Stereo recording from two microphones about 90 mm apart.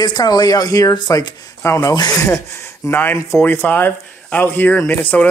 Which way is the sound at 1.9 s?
50° left (ahead or behind).